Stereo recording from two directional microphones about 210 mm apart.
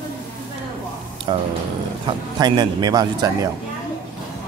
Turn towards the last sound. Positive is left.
turn(degrees=-20)  # may be behind; listen again after turning